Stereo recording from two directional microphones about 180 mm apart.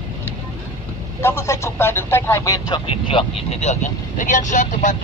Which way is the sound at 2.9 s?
30° left (ahead or behind).